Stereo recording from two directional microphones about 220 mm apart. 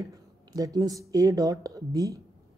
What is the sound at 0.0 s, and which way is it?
Speech, 15° right (ahead or behind).